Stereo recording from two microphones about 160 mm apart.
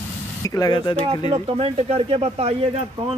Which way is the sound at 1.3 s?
35° right (ahead or behind).